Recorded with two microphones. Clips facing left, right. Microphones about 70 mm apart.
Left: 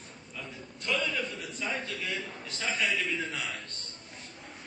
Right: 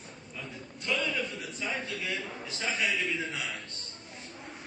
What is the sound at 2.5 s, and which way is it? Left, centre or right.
Speech, centre.